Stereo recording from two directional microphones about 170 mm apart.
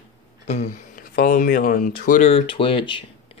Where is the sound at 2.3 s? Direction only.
30° left (ahead or behind).